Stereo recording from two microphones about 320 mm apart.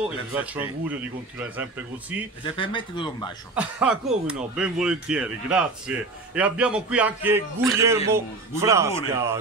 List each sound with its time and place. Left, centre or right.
0.3 s speech: centre
2.4 s speech: centre
3.5 s speech: centre